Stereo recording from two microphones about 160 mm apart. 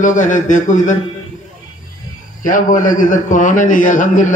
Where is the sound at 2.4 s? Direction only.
55° left (ahead or behind).